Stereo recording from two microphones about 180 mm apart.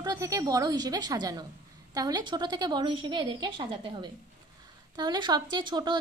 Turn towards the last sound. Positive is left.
turn(degrees=-25)  # may be behind; listen again after turning